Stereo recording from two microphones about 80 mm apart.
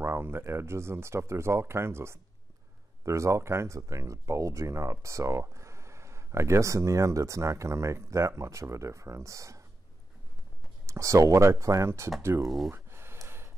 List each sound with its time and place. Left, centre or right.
0.0 s speech: right
10.9 s speech: right
12.4 s speech: centre
12.7 s a sound: right